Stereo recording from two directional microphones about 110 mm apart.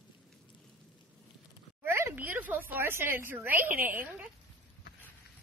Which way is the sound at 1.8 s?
25° right (ahead or behind).